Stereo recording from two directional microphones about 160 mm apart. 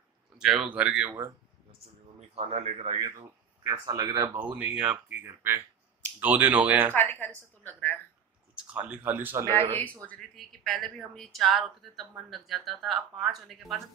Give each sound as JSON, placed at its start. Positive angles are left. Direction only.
{"t": 0.4, "sound": "speech", "side_deg": -5}
{"t": 2.3, "sound": "speech", "side_deg": -40}
{"t": 3.0, "sound": "speech", "side_deg": -20}
{"t": 6.1, "sound": "speech", "side_deg": -10}
{"t": 7.6, "sound": "speech", "side_deg": 10}
{"t": 8.5, "sound": "speech", "side_deg": -10}
{"t": 9.6, "sound": "speech", "side_deg": 10}